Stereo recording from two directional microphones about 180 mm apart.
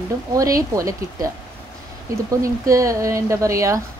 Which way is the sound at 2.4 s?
15° right (ahead or behind).